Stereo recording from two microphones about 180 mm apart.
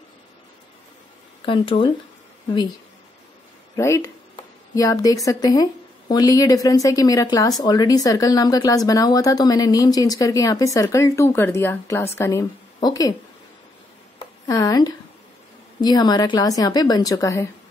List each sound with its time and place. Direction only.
1.4 s speech: 30° left (ahead or behind)
3.7 s a woman's voice: 15° left (ahead or behind)
14.5 s speech: 20° left (ahead or behind)